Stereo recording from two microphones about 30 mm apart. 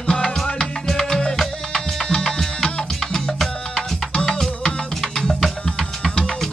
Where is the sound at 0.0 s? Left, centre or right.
Left.